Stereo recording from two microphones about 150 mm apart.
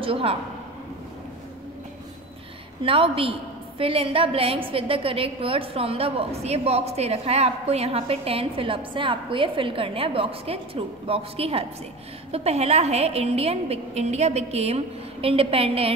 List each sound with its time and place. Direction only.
0.0 s a man's voice: 40° right (ahead or behind)
2.8 s a woman's voice: 40° right (ahead or behind)